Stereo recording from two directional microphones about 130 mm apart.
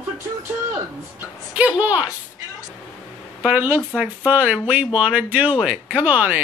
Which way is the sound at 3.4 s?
15° right (ahead or behind).